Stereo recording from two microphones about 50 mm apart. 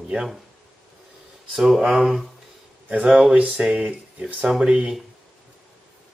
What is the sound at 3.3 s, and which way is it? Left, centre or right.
Speech, right.